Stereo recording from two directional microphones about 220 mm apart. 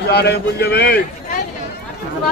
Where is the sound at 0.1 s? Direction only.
45° left (ahead or behind).